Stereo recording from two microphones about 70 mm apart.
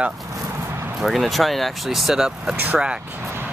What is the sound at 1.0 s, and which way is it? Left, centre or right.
Speech, centre.